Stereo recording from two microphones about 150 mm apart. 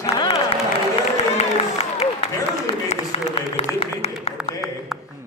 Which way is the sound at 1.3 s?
45° left (ahead or behind).